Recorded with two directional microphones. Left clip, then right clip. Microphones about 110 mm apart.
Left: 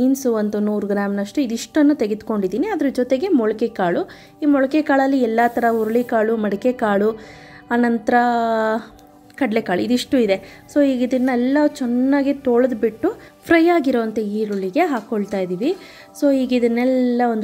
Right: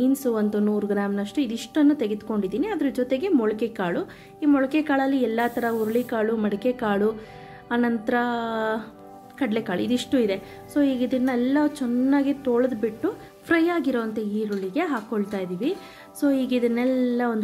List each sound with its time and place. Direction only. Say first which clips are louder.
0.0 s a woman's voice: left 5 dB; 50° left (ahead or behind)